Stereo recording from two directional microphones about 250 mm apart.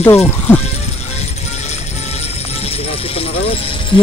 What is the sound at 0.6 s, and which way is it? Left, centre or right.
Music, left.